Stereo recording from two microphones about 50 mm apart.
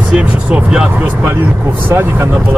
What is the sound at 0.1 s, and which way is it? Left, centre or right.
Speech, right.